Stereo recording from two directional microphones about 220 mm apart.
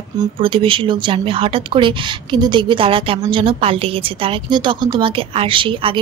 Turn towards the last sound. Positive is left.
turn(degrees=-25)  # may be behind; listen again after turning